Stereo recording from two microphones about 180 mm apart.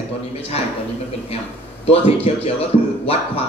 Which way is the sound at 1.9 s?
35° left (ahead or behind).